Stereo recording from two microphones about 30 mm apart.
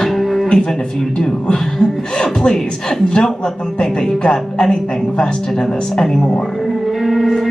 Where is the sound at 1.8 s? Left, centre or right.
Centre.